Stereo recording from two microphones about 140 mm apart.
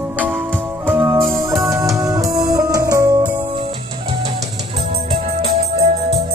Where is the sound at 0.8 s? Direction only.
15° right (ahead or behind).